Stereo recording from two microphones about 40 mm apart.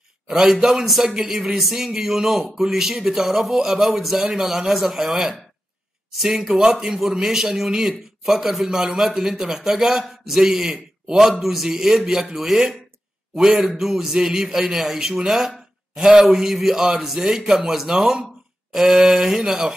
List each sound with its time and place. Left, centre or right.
0.3 s a man's voice: centre
5.1 s a man's voice: centre